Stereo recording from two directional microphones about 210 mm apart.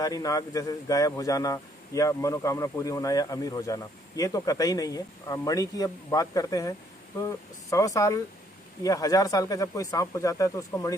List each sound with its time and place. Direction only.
0.0 s speech: 15° left (ahead or behind)